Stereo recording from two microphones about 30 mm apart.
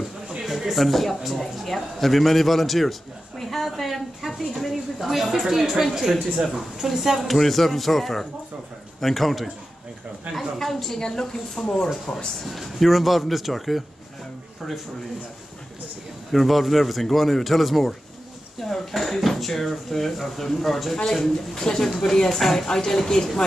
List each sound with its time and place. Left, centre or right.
0.4 s a man's voice: centre
5.0 s speech: centre
7.2 s a man's voice: centre
10.6 s speech: centre
12.3 s a man's voice: centre
16.3 s a man's voice: centre; by 21.8 s left
21.8 s speech: centre